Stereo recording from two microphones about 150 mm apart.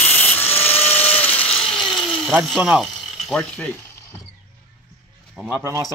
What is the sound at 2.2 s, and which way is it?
Speech, centre (ahead or behind).